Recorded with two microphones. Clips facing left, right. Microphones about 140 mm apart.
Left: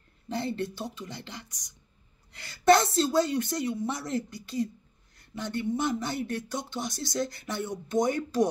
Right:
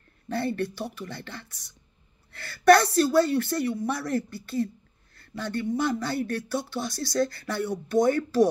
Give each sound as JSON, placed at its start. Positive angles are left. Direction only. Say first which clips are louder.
{"t": 0.3, "sound": "speech", "louder": "right 3 dB", "side_deg": 20}
{"t": 5.1, "sound": "a sound", "louder": "right 2 dB", "side_deg": 20}
{"t": 5.8, "sound": "speech", "louder": "right 3 dB", "side_deg": 20}